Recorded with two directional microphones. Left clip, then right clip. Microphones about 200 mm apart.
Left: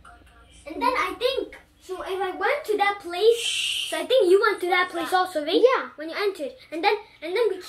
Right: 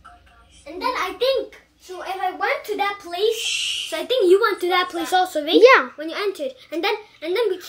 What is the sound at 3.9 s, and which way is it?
A child's voice, 30° right (ahead or behind).